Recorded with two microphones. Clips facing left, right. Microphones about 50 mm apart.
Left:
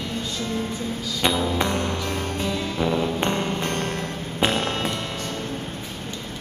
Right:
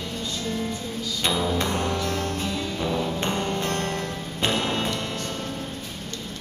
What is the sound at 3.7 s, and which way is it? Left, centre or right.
Music, left.